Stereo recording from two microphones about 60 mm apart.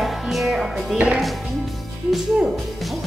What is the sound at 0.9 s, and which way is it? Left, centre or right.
Speech, centre.